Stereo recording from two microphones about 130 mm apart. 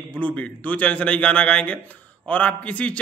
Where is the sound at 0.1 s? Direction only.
10° left (ahead or behind).